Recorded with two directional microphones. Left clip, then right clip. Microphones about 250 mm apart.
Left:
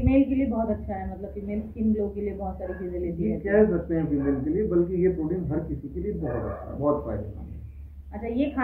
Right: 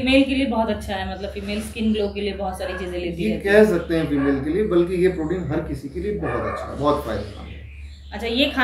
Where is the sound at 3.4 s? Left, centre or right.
Right.